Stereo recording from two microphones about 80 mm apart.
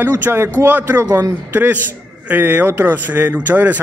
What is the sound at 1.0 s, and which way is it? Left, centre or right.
Speech, right.